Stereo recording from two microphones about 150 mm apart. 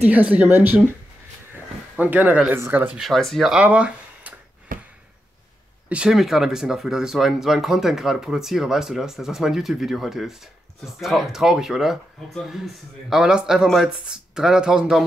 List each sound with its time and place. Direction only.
0.0 s speech: 10° right (ahead or behind)
2.0 s speech: 10° right (ahead or behind)
3.0 s speech: centre (ahead or behind)
4.7 s a sound: 65° right (ahead or behind)
5.9 s speech: 5° right (ahead or behind)